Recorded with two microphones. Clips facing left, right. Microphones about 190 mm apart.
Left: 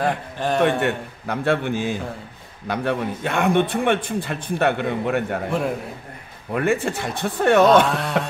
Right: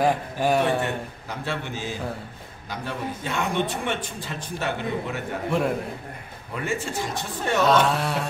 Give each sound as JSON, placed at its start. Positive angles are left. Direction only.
{"t": 0.0, "sound": "a man's voice", "side_deg": -10}
{"t": 0.6, "sound": "a man's voice", "side_deg": 70}
{"t": 6.5, "sound": "a man's voice", "side_deg": 60}
{"t": 7.8, "sound": "carnatic music", "side_deg": 0}